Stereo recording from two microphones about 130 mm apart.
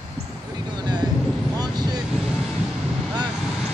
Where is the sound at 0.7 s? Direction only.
35° right (ahead or behind).